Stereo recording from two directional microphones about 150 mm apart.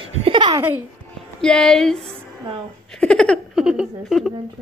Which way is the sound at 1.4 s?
5° left (ahead or behind).